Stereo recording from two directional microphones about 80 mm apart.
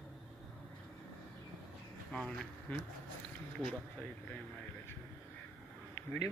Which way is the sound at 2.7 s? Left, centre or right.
Centre.